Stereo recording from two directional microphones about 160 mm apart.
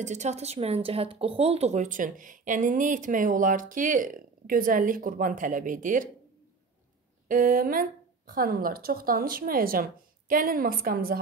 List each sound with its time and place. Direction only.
0.0 s speech: 45° right (ahead or behind)
7.2 s speech: 60° right (ahead or behind)